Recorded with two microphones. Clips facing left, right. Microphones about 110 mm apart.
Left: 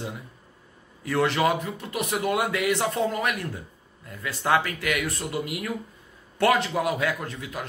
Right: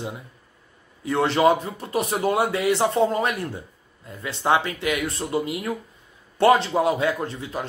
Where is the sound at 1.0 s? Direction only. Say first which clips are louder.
Right 4 dB; 25° right (ahead or behind).